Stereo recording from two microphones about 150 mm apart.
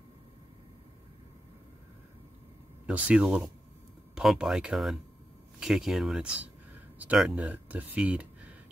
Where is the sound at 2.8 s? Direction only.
5° right (ahead or behind).